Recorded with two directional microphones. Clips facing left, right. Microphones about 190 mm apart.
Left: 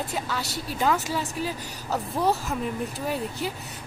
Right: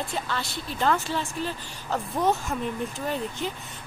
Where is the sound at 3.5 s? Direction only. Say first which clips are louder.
Left 2 dB; 40° left (ahead or behind).